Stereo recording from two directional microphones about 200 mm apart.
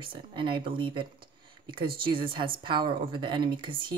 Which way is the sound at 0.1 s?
25° right (ahead or behind).